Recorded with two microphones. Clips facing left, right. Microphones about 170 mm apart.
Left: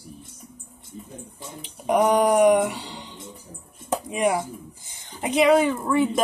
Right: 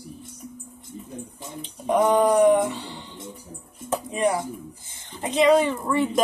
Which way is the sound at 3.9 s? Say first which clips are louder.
Left 1 dB; 15° left (ahead or behind).